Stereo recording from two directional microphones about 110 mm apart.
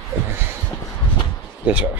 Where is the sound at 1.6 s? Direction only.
15° right (ahead or behind).